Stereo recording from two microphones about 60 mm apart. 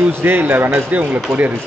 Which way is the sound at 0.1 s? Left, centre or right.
Right.